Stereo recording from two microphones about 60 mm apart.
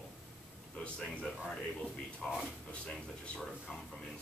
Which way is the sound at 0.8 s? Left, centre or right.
Left.